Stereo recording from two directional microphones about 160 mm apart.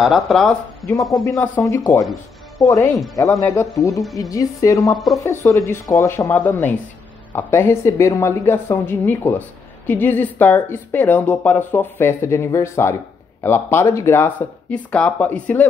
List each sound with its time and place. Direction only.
0.0 s speech: centre (ahead or behind); by 2.9 s 20° left (ahead or behind)
3.3 s speech: 5° left (ahead or behind)